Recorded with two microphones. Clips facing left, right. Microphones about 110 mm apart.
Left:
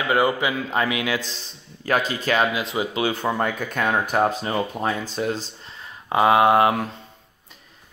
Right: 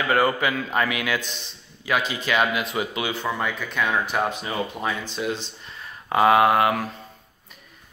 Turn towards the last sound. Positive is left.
turn(degrees=25)  # may be behind; listen again after turning